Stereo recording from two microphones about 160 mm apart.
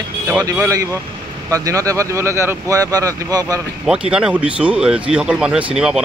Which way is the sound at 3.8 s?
5° right (ahead or behind).